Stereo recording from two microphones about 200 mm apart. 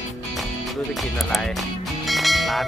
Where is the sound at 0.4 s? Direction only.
Centre (ahead or behind).